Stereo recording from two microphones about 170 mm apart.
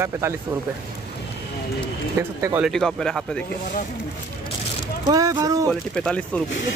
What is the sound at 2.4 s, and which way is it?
Speech, 15° right (ahead or behind).